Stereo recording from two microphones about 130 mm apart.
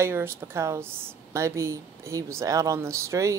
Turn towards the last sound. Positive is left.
turn(degrees=-25)  # may be behind; listen again after turning